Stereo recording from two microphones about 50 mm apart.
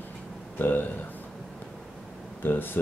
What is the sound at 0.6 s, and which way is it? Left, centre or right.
Speech, left.